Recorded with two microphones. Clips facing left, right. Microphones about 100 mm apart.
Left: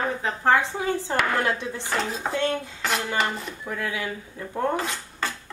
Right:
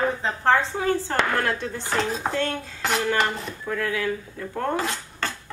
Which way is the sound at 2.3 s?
15° left (ahead or behind).